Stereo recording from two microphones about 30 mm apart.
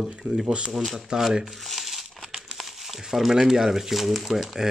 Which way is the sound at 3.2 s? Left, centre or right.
Centre.